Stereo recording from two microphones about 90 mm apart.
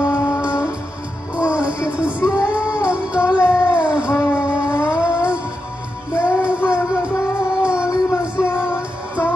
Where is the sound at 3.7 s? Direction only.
10° right (ahead or behind).